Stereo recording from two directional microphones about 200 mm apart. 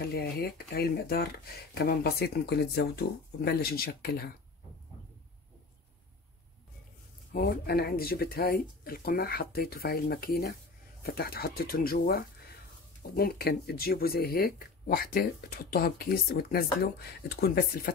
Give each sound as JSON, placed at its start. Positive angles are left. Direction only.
{"t": 0.1, "sound": "speech", "side_deg": 50}
{"t": 7.3, "sound": "speech", "side_deg": 50}